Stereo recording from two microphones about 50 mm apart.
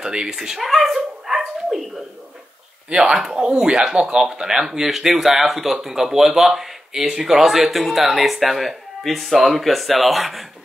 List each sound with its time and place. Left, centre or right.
0.0 s dog: centre
2.9 s speech: centre